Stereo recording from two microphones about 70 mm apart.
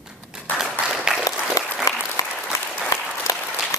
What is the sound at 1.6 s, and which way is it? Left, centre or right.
Applause, left.